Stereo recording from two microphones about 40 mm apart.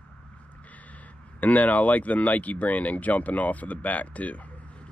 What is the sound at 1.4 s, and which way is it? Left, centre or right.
Speech, left.